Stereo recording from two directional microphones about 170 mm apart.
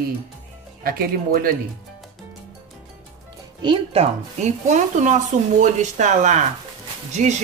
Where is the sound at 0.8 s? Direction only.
60° right (ahead or behind).